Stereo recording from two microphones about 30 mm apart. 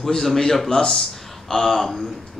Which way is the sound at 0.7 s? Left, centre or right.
Left.